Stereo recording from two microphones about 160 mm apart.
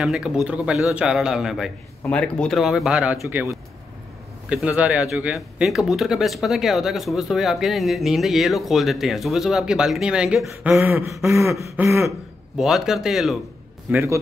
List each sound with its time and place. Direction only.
0.0 s speech: 5° right (ahead or behind)
2.0 s speech: 5° left (ahead or behind)
10.7 s throat clearing: 15° right (ahead or behind)
11.1 s speech: centre (ahead or behind)
11.4 s throat clearing: 20° right (ahead or behind)
12.5 s speech: centre (ahead or behind)
13.9 s throat clearing: 15° right (ahead or behind)